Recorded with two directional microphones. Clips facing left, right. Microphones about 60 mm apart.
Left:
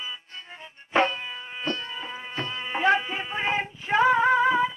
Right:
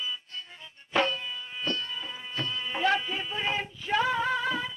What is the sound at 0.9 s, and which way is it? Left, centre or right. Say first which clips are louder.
Music: left 4 dB; left.